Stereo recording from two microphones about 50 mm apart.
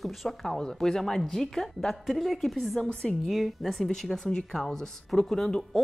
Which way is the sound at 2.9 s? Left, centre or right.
Centre.